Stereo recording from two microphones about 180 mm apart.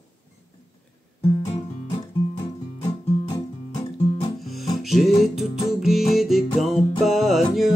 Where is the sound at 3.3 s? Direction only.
25° left (ahead or behind).